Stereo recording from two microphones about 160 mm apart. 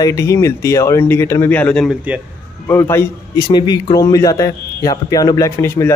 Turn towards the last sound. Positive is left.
turn(degrees=15)  # may be behind; listen again after turning